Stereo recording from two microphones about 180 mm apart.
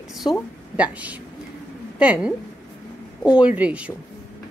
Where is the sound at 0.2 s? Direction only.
25° left (ahead or behind).